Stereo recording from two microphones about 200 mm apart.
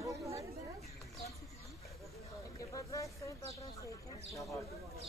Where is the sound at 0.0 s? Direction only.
15° right (ahead or behind).